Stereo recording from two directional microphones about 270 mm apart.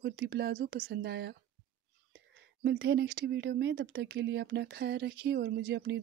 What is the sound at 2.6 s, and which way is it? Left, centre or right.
Speech, right.